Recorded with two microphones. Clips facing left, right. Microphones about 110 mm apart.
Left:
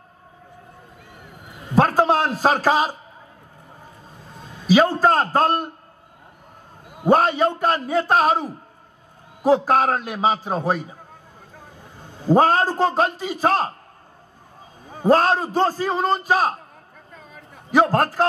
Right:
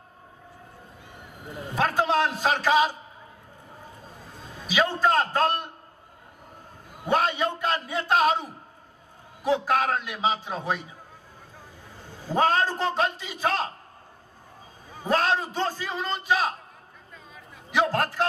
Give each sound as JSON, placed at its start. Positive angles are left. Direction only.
{"t": 1.8, "sound": "a man's voice", "side_deg": 40}
{"t": 4.6, "sound": "a man's voice", "side_deg": 40}
{"t": 7.1, "sound": "a man's voice", "side_deg": 45}
{"t": 12.4, "sound": "a man's voice", "side_deg": 40}
{"t": 15.0, "sound": "a man's voice", "side_deg": 40}
{"t": 17.1, "sound": "a sound", "side_deg": 45}